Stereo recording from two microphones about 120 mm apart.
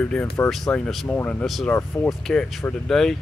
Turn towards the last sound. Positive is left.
turn(degrees=5)  # may be behind; listen again after turning